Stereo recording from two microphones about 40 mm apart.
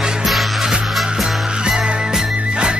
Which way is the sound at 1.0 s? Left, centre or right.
Centre.